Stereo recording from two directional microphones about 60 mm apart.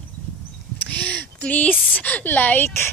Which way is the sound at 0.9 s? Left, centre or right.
Left.